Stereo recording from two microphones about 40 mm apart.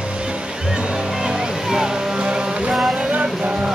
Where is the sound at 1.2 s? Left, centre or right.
Centre.